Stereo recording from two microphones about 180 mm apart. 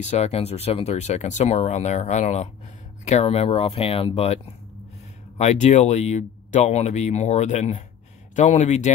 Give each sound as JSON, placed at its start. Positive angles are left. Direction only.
{"t": 0.0, "sound": "speech", "side_deg": 40}
{"t": 5.4, "sound": "speech", "side_deg": 40}